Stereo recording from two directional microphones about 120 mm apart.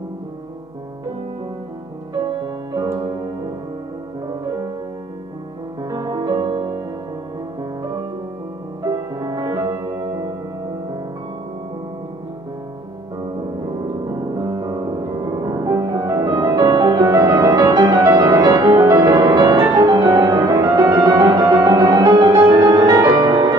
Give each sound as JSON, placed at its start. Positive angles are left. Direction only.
{"t": 2.4, "sound": "music", "side_deg": -30}
{"t": 5.9, "sound": "music", "side_deg": -30}
{"t": 8.8, "sound": "music", "side_deg": -35}
{"t": 14.3, "sound": "music", "side_deg": -35}